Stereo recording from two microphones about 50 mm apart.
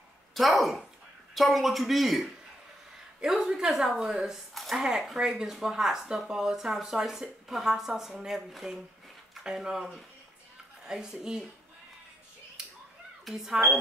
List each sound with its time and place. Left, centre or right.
0.3 s a woman's voice: centre
10.9 s speech: centre
13.3 s speech: centre